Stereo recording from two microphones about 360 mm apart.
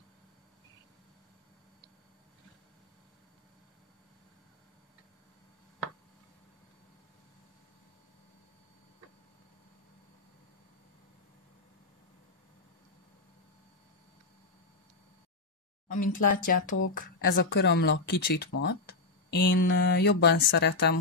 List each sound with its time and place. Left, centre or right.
15.9 s speech: left